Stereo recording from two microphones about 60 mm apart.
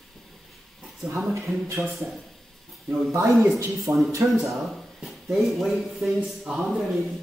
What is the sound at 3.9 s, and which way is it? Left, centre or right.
Speech, right.